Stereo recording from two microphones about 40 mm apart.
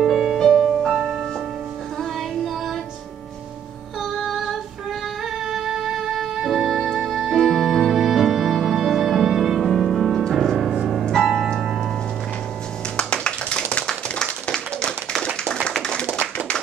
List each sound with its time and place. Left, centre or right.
0.0 s music: centre
4.0 s female singing: centre
5.4 s music: centre
12.9 s tap: left
14.1 s clapping: centre